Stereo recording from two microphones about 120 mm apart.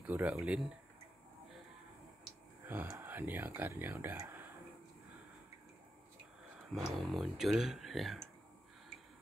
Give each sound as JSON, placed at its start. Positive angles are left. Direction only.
{"t": 0.0, "sound": "speech", "side_deg": -10}
{"t": 2.6, "sound": "speech", "side_deg": -15}
{"t": 6.7, "sound": "speech", "side_deg": 0}